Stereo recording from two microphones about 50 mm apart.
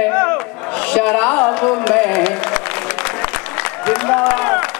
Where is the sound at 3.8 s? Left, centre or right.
Centre.